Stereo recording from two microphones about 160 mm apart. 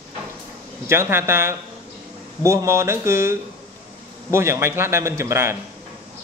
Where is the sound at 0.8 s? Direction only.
15° right (ahead or behind).